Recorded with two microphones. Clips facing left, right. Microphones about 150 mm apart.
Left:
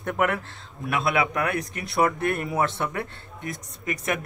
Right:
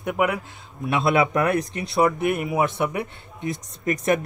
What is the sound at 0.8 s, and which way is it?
Speech, 25° right (ahead or behind).